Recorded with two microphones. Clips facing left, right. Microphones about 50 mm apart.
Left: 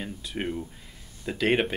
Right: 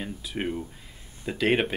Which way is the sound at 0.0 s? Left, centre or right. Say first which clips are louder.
Right 1 dB; centre.